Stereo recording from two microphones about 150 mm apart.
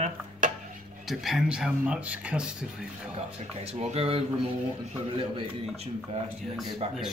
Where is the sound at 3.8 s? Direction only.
40° right (ahead or behind).